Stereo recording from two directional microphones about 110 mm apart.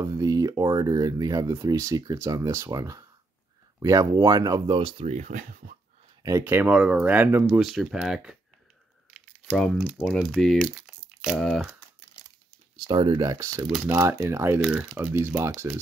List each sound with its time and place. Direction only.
0.0 s speech: 30° right (ahead or behind)
4.7 s speech: 50° right (ahead or behind)
5.0 s speech: 90° right
6.4 s speech: 15° right (ahead or behind)
7.5 s speech: centre (ahead or behind)
9.9 s speech: centre (ahead or behind)
12.7 s speech: 40° right (ahead or behind); by 14.6 s 20° right (ahead or behind)
14.6 s speech: 5° right (ahead or behind)
15.0 s speech: 20° right (ahead or behind)